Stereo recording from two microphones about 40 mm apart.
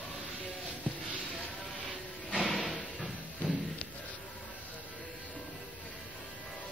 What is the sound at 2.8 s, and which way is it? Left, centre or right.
Music, centre.